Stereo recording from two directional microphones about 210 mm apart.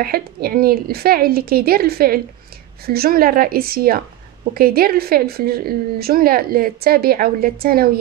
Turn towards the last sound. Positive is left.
turn(degrees=-45)  # may be behind; listen again after turning